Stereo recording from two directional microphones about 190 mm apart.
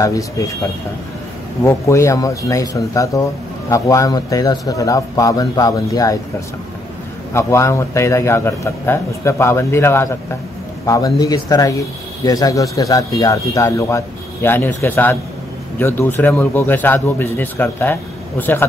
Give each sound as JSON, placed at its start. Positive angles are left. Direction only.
{"t": 0.0, "sound": "a man's voice", "side_deg": 15}
{"t": 1.6, "sound": "a man's voice", "side_deg": 15}
{"t": 7.3, "sound": "a man's voice", "side_deg": 15}